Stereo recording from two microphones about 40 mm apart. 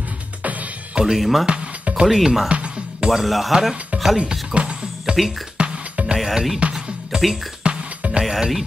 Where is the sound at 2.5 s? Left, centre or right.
Right.